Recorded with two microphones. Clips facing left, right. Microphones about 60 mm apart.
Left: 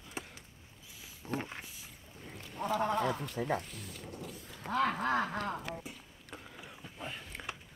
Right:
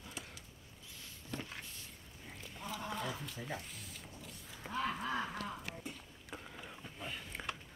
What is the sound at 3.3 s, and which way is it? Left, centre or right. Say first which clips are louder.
Speech: left 10 dB; left.